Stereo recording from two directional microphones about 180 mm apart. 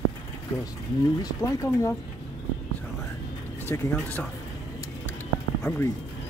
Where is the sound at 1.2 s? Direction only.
15° left (ahead or behind).